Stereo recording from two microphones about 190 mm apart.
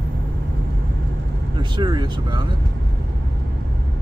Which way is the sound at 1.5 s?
25° right (ahead or behind).